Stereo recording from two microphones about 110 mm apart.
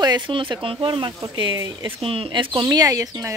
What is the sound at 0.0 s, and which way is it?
Speech, 45° right (ahead or behind).